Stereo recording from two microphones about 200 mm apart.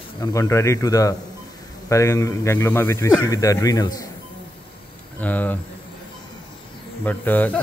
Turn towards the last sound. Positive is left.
turn(degrees=10)  # may be behind; listen again after turning